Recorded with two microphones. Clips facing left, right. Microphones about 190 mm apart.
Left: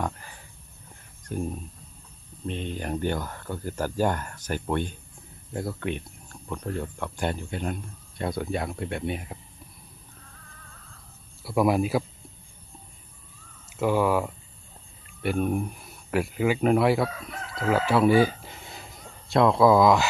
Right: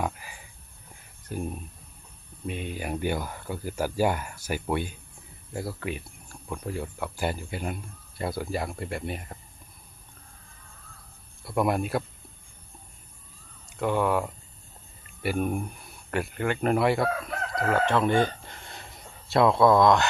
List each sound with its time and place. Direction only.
0.0 s a sound: 10° right (ahead or behind)
1.2 s speech: 5° right (ahead or behind)
11.4 s speech: centre (ahead or behind)
13.7 s speech: 5° left (ahead or behind)
17.1 s crowing: 50° right (ahead or behind)
17.6 s speech: 5° left (ahead or behind)